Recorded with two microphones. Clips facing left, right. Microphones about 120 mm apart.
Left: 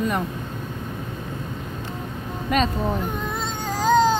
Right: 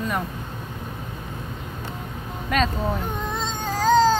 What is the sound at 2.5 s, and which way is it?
Speech, 5° left (ahead or behind).